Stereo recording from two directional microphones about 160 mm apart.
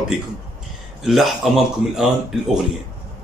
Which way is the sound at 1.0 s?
Centre (ahead or behind).